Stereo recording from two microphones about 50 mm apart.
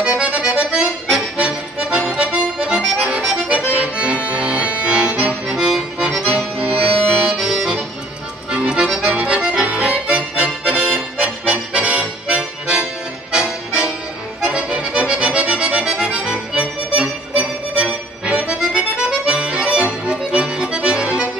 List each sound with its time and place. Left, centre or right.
0.2 s accordion: right